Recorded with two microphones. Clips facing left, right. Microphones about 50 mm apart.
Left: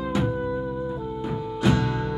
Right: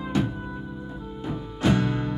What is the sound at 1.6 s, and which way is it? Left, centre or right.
Music, right.